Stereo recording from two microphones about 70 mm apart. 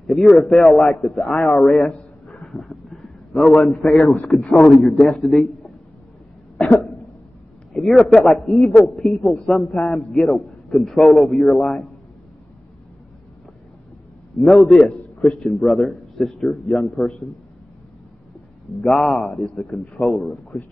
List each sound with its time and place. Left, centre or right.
0.0 s a man's voice: centre
2.0 s a sound: centre
2.5 s a sound: centre
3.8 s a man's voice: centre
6.6 s cough: centre
7.7 s a man's voice: centre
14.4 s a man's voice: centre
18.8 s a man's voice: centre
19.4 s a man's voice: centre
20.0 s a man's voice: centre